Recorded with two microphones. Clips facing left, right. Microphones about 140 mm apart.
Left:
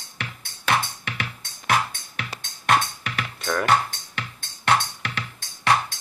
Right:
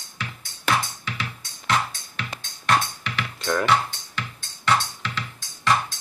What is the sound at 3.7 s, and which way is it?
Music, 50° left (ahead or behind).